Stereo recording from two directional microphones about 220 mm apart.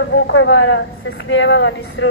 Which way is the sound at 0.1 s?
60° left (ahead or behind).